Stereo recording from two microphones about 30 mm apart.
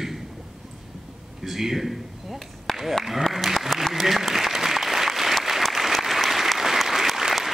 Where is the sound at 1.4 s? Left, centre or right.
Centre.